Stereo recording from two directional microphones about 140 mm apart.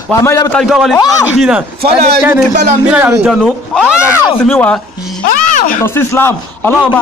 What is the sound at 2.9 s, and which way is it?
Speech, 15° right (ahead or behind).